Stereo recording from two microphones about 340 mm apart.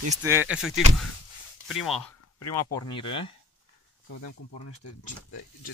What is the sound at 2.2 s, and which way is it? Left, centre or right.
Speech, left.